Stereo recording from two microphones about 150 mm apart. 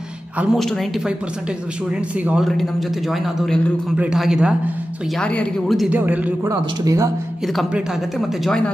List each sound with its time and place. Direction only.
0.4 s speech: centre (ahead or behind)
3.9 s speech: 5° right (ahead or behind)
5.2 s speech: 5° left (ahead or behind)
5.9 s speech: 10° right (ahead or behind)
6.5 s speech: 25° right (ahead or behind)
7.4 s speech: centre (ahead or behind)